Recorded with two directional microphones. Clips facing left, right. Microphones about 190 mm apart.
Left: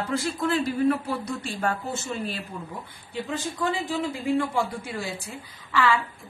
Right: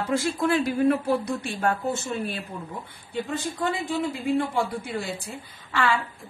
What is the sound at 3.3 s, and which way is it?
Speech, 60° right (ahead or behind).